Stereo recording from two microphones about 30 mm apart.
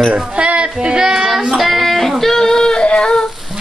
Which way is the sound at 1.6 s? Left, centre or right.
Centre.